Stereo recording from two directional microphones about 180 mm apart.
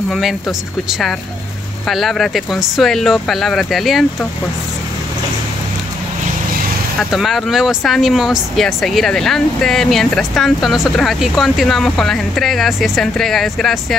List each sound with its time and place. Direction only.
0.1 s speech: centre (ahead or behind)
7.0 s speech: centre (ahead or behind)